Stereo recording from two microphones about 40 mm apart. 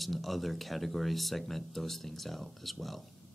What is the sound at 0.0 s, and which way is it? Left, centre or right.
Speech, centre.